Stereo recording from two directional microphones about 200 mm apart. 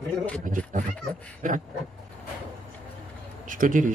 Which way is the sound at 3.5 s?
40° right (ahead or behind).